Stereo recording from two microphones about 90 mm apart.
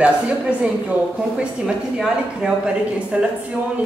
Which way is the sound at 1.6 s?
10° right (ahead or behind).